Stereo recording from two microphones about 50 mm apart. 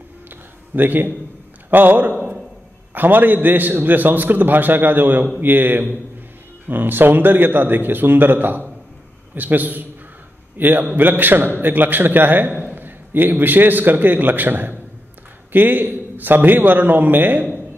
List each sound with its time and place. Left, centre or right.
0.7 s a man's voice: right